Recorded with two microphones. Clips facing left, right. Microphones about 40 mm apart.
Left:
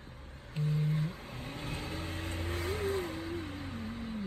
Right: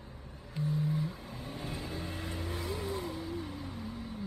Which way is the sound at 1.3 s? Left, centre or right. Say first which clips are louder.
Even; left.